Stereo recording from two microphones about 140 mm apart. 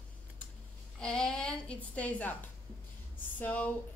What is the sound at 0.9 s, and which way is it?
A woman's voice, 5° left (ahead or behind).